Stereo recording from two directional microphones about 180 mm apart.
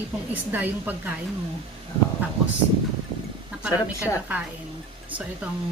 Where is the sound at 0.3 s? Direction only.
10° right (ahead or behind).